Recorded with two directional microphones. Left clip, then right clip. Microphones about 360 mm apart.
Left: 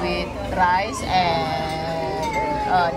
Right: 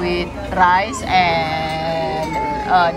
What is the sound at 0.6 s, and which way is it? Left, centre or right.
A woman's voice, centre.